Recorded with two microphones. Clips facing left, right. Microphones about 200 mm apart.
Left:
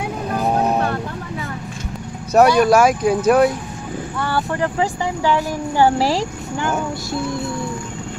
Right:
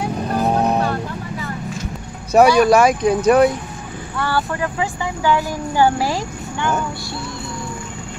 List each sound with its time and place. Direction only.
2.3 s speech: centre (ahead or behind)
4.2 s vehicle: 20° left (ahead or behind)
4.6 s speech: 35° left (ahead or behind)